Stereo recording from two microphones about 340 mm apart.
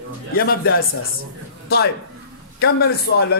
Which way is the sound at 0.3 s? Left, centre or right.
Left.